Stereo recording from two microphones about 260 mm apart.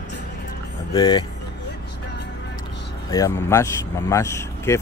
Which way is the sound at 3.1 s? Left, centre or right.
Centre.